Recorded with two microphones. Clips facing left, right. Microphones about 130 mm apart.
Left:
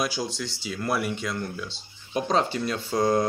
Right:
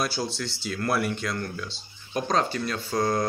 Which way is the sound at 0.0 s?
15° left (ahead or behind).